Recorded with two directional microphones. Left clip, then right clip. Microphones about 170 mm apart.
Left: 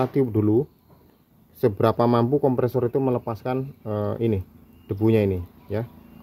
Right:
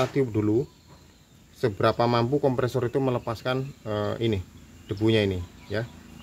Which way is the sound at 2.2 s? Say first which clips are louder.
Left 3 dB; 30° left (ahead or behind).